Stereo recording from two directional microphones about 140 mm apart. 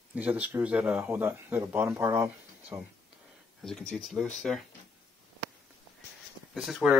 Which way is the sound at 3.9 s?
Centre (ahead or behind).